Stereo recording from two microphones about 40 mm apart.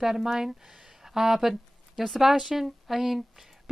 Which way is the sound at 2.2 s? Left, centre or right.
Centre.